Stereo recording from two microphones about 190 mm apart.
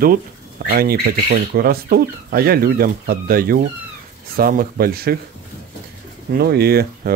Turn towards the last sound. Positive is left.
turn(degrees=-55)  # may be behind; listen again after turning